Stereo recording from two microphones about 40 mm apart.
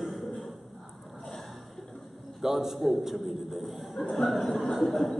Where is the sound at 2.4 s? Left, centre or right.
Centre.